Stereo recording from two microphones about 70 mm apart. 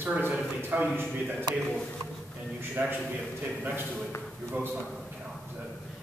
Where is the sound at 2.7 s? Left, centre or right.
Right.